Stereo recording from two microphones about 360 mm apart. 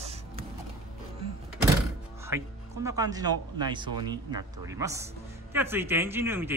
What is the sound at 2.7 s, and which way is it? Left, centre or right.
Speech, centre.